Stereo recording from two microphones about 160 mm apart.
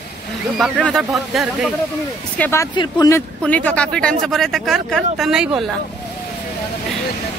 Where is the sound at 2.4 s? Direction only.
15° left (ahead or behind).